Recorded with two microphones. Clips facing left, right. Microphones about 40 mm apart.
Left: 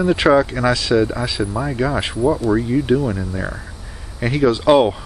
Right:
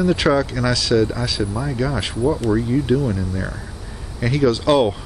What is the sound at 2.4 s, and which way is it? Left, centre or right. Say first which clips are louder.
Speech: left 2 dB; centre.